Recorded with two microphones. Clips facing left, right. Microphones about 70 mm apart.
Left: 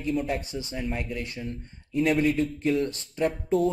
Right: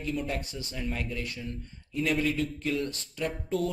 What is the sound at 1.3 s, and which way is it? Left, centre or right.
Speech, left.